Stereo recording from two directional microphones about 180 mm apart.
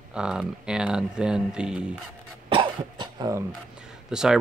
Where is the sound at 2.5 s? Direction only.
25° right (ahead or behind).